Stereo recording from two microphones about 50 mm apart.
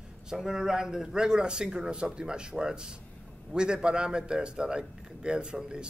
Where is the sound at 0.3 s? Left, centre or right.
Centre.